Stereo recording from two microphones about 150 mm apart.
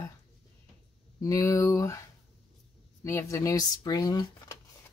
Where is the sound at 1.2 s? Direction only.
20° left (ahead or behind).